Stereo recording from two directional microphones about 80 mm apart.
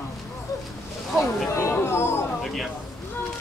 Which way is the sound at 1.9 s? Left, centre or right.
Left.